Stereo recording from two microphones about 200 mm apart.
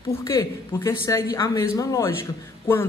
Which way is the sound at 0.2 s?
15° left (ahead or behind).